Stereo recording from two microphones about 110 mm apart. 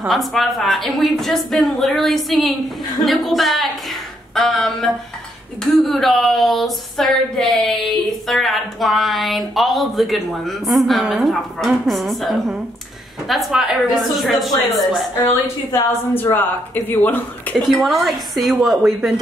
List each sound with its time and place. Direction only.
0.1 s speech: centre (ahead or behind)
15.1 s a woman's voice: 20° left (ahead or behind)
17.6 s speech: centre (ahead or behind)